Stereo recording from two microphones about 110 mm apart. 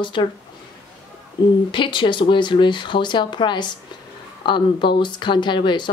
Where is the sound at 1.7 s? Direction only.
45° left (ahead or behind).